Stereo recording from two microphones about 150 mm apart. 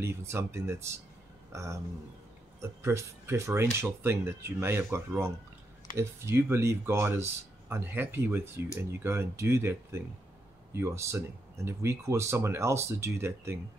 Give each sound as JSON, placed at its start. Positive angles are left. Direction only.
{"t": 0.0, "sound": "speech", "side_deg": -20}